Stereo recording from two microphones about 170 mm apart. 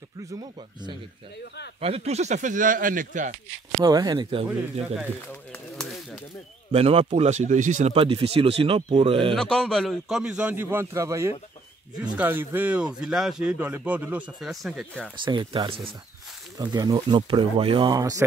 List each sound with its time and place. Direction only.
1.8 s speech: 35° right (ahead or behind)
3.8 s speech: 20° right (ahead or behind)
5.3 s pigeon: 5° left (ahead or behind)
6.7 s speech: 35° right (ahead or behind)
7.9 s speech: 30° right (ahead or behind)
9.3 s a man's voice: 5° left (ahead or behind)
15.2 s speech: 30° right (ahead or behind)